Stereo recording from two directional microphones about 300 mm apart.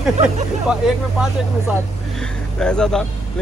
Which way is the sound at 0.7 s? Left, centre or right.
Centre.